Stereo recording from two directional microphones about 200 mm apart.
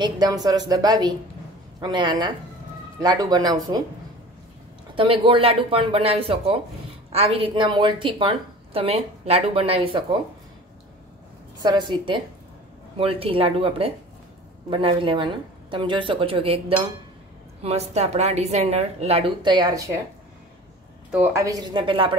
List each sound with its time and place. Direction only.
0.0 s a woman's voice: 20° right (ahead or behind)
4.9 s a woman's voice: 25° right (ahead or behind)
11.6 s a woman's voice: 20° right (ahead or behind)
21.1 s a woman's voice: 10° right (ahead or behind)